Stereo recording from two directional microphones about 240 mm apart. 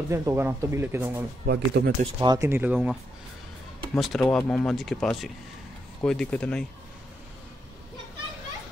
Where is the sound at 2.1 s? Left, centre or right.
Centre.